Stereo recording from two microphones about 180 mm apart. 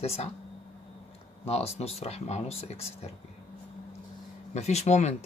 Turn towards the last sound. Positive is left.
turn(degrees=40)  # may be behind; listen again after turning